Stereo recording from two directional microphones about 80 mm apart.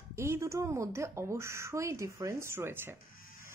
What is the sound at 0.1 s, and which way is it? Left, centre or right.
Speech, right.